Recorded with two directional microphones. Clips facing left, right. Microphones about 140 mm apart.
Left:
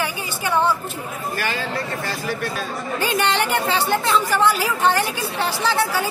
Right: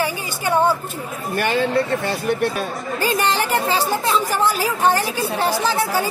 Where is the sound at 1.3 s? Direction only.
55° right (ahead or behind).